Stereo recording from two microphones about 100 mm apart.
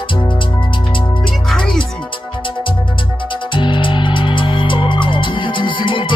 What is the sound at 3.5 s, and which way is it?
Music, 55° left (ahead or behind).